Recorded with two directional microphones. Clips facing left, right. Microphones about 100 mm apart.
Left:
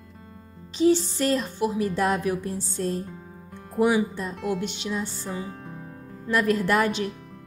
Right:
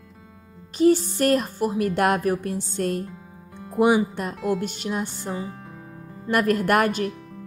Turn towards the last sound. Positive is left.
turn(degrees=-55)  # may be behind; listen again after turning